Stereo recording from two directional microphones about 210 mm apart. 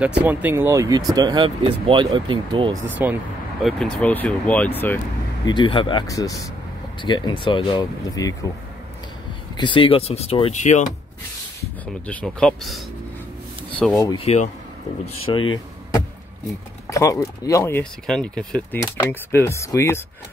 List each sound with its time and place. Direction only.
0.2 s speech: 10° right (ahead or behind)
2.9 s speech: 10° right (ahead or behind)
3.6 s speech: 5° left (ahead or behind)
5.4 s speech: 20° left (ahead or behind)
9.6 s speech: 25° left (ahead or behind)
12.1 s speech: 5° left (ahead or behind)
14.0 s speech: 25° left (ahead or behind)
16.9 s speech: 15° left (ahead or behind)